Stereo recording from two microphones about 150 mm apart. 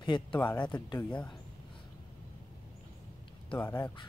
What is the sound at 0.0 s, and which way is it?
Speech, 30° left (ahead or behind).